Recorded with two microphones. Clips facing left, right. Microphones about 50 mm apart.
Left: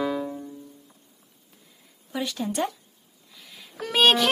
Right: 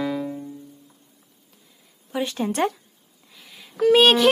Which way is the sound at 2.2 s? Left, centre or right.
Right.